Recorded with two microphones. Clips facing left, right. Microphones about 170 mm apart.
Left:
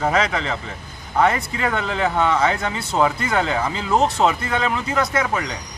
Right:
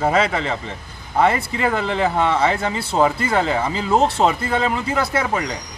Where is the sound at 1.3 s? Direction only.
30° right (ahead or behind).